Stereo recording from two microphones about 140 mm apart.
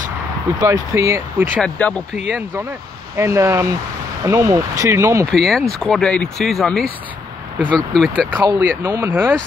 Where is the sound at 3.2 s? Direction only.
20° right (ahead or behind).